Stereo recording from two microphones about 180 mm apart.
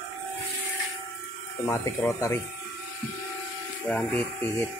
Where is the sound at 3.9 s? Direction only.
5° left (ahead or behind).